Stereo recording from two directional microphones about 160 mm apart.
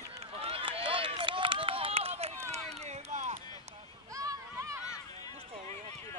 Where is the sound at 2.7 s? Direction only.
40° right (ahead or behind).